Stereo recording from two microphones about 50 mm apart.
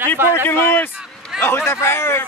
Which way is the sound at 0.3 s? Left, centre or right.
Left.